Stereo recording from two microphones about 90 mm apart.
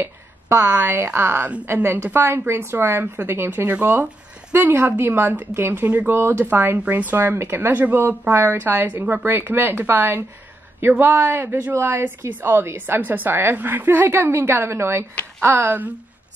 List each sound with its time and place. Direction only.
0.0 s a woman's voice: 25° right (ahead or behind)